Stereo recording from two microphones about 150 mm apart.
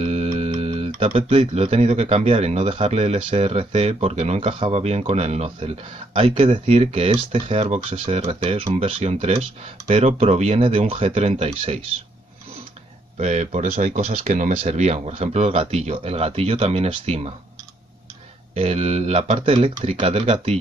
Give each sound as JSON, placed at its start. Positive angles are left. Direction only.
{"t": 0.0, "sound": "speech", "side_deg": -40}
{"t": 13.2, "sound": "speech", "side_deg": -50}
{"t": 14.6, "sound": "speech", "side_deg": -45}
{"t": 18.5, "sound": "speech", "side_deg": -45}